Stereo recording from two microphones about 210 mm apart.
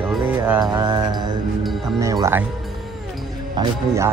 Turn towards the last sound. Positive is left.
turn(degrees=-15)  # may be behind; listen again after turning